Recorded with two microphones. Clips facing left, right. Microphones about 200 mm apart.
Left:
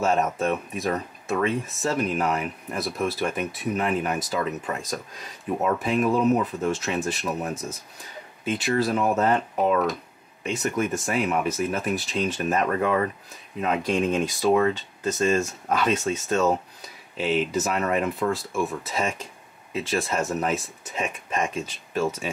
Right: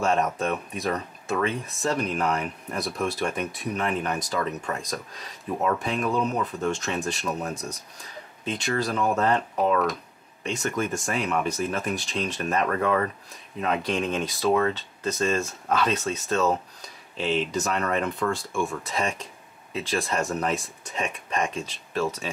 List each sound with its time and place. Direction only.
0.0 s speech: centre (ahead or behind)
12.6 s speech: 15° left (ahead or behind)
13.7 s speech: centre (ahead or behind)
14.5 s speech: 15° left (ahead or behind)
14.8 s speech: centre (ahead or behind)